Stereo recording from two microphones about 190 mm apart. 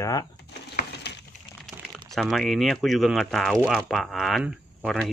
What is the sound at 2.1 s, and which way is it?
Speech, centre (ahead or behind).